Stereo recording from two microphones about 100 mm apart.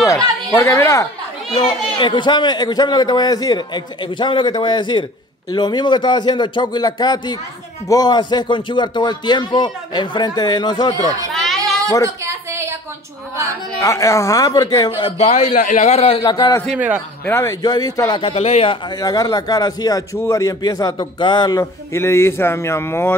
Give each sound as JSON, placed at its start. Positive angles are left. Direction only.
{"t": 0.0, "sound": "a sound", "side_deg": 35}
{"t": 1.7, "sound": "a man's voice", "side_deg": 50}
{"t": 11.3, "sound": "a sound", "side_deg": 0}
{"t": 12.2, "sound": "a sound", "side_deg": -30}
{"t": 13.7, "sound": "speech", "side_deg": 30}
{"t": 15.9, "sound": "a man's voice", "side_deg": 75}
{"t": 16.2, "sound": "a man's voice", "side_deg": 45}
{"t": 16.7, "sound": "a man's voice", "side_deg": -15}
{"t": 17.2, "sound": "speech", "side_deg": 20}
{"t": 17.5, "sound": "speech", "side_deg": 40}
{"t": 18.2, "sound": "speech", "side_deg": 90}
{"t": 18.9, "sound": "speech", "side_deg": 40}
{"t": 21.2, "sound": "a man's voice", "side_deg": 50}
{"t": 21.9, "sound": "speech", "side_deg": 25}